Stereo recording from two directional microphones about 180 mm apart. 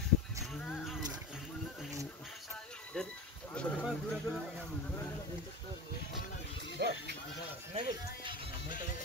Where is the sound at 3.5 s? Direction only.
5° left (ahead or behind).